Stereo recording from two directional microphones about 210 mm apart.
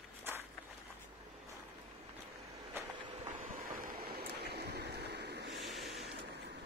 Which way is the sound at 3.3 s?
40° right (ahead or behind).